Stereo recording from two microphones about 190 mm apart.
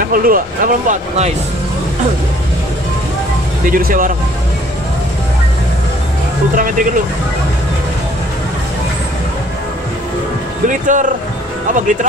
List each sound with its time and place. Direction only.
0.1 s speech: 50° right (ahead or behind)
3.7 s speech: 45° right (ahead or behind)
6.5 s speech: 45° right (ahead or behind)
10.7 s speech: 40° right (ahead or behind)